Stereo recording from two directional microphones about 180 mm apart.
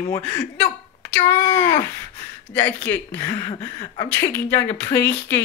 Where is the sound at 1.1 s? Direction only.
15° left (ahead or behind).